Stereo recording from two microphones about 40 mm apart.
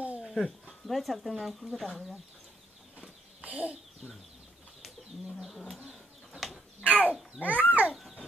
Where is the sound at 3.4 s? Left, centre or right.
Right.